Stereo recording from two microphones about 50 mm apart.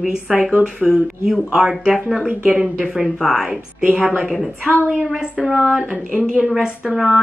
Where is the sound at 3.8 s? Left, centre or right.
Centre.